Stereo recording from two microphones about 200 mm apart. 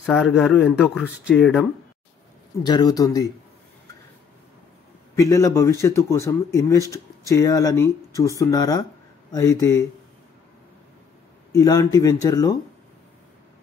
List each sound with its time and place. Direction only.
0.0 s speech: centre (ahead or behind)
2.6 s speech: 20° left (ahead or behind)
5.1 s speech: 15° left (ahead or behind)
11.5 s speech: 15° left (ahead or behind)